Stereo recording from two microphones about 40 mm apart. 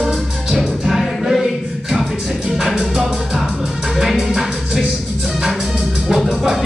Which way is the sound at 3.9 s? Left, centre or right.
Centre.